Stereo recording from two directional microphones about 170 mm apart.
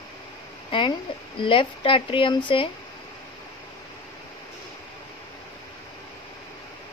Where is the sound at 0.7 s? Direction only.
30° left (ahead or behind).